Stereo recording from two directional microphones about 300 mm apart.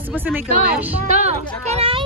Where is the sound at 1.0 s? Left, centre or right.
Right.